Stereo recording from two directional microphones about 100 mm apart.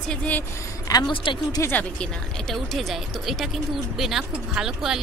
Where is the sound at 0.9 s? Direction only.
35° left (ahead or behind).